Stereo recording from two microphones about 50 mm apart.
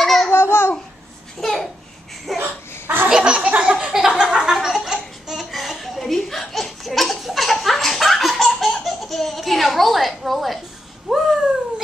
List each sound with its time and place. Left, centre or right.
0.0 s babbling: centre
0.3 s babbling: left
1.4 s babbling: centre
2.3 s a sound: right
3.1 s laughter: centre
3.3 s laughter: right
4.2 s a sound: centre
5.6 s laughter: centre
11.1 s a sound: centre